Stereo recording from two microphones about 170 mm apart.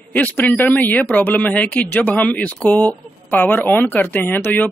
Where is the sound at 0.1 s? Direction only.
10° left (ahead or behind).